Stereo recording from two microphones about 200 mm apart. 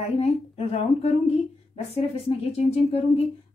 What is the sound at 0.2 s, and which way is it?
Speech, 30° left (ahead or behind).